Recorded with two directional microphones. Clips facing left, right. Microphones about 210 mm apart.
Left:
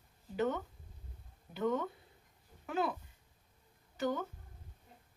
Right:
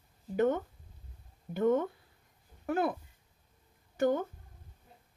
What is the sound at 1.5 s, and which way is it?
A woman's voice, 50° right (ahead or behind).